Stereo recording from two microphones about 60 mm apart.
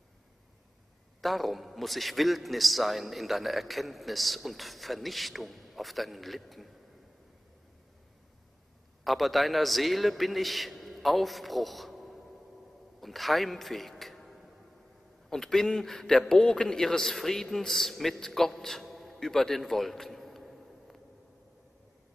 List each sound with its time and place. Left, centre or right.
1.2 s a man's voice: centre
9.0 s a man's voice: centre